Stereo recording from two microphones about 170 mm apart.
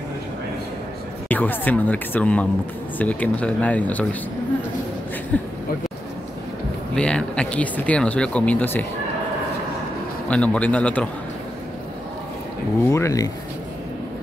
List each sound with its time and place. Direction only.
1.3 s speech: 10° left (ahead or behind)
5.3 s speech: 10° left (ahead or behind)
7.0 s speech: 5° left (ahead or behind)
10.2 s speech: 5° left (ahead or behind)
12.9 s speech: 20° left (ahead or behind)